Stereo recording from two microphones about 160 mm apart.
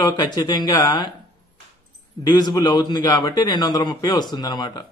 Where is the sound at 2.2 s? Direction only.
25° left (ahead or behind).